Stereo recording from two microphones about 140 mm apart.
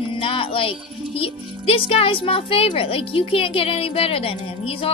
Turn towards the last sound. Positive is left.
turn(degrees=40)  # may be behind; listen again after turning